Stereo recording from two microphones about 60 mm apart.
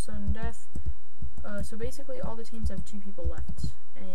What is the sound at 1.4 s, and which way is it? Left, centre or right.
Speech, centre.